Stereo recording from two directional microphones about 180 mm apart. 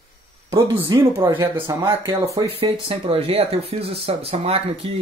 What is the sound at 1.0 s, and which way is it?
Speech, 15° right (ahead or behind).